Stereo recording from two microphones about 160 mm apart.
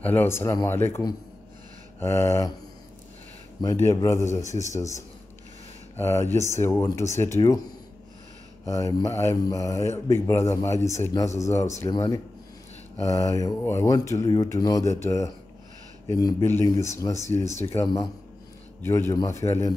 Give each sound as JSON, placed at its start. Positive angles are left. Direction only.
{"t": 0.0, "sound": "speech", "side_deg": 10}
{"t": 3.8, "sound": "speech", "side_deg": 20}
{"t": 8.6, "sound": "speech", "side_deg": 20}